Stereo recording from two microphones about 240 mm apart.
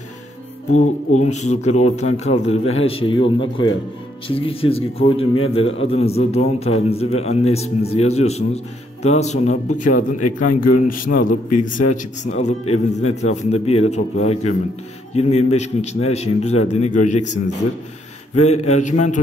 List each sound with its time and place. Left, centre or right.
0.7 s a man's voice: left
10.2 s a man's voice: left
11.1 s a man's voice: left